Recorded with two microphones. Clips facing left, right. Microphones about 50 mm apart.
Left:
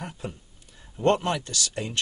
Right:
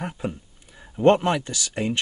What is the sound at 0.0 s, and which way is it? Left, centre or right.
Speech, right.